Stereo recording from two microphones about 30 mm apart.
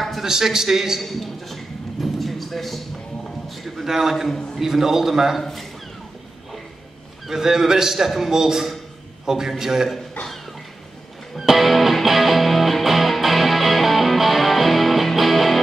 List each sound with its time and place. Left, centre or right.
0.2 s a man's voice: centre
1.0 s a sound: centre
3.8 s a man's voice: centre
7.2 s a man's voice: centre
11.3 s music: centre